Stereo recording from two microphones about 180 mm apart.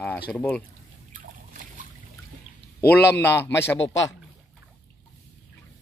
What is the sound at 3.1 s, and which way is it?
Speech, 10° left (ahead or behind).